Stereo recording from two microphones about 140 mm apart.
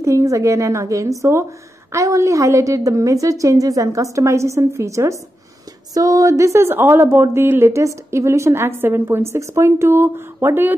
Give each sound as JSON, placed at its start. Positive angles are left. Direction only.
{"t": 0.0, "sound": "a woman's voice", "side_deg": -20}